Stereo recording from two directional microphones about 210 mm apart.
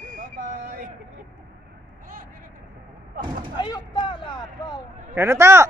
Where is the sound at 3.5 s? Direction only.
20° left (ahead or behind).